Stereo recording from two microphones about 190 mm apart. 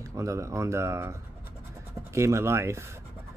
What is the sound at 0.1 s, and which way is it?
Speech, 15° right (ahead or behind).